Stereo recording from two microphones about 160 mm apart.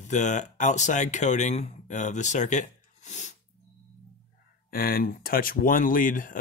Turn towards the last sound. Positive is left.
turn(degrees=55)  # may be behind; listen again after turning